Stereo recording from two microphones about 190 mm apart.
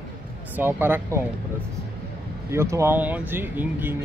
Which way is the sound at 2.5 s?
15° right (ahead or behind).